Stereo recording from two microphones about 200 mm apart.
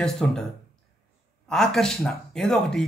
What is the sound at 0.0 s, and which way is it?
Speech, 5° left (ahead or behind).